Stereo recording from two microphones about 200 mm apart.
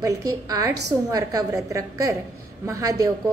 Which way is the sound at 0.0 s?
15° right (ahead or behind).